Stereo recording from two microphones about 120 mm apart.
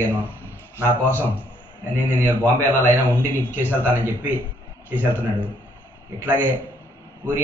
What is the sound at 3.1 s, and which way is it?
Speech, 15° left (ahead or behind).